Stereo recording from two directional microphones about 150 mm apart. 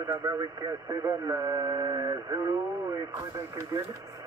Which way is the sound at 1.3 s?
25° right (ahead or behind).